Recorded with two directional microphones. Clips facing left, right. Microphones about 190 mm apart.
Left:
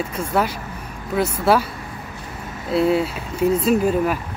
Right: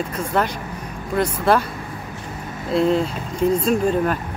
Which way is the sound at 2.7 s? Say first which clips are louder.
Even; 5° left (ahead or behind).